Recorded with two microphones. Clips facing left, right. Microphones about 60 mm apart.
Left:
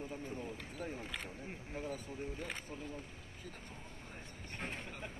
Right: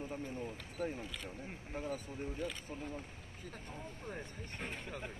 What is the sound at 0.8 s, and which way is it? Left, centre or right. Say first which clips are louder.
Speech: right 4 dB; right.